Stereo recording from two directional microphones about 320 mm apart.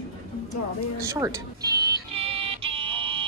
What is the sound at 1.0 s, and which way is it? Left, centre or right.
Music, centre.